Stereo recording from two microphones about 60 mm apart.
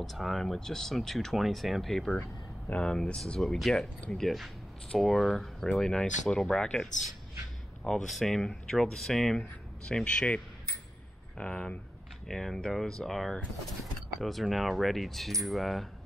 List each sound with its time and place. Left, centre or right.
0.0 s speech: centre
2.7 s speech: centre
10.0 s speech: centre
12.3 s speech: centre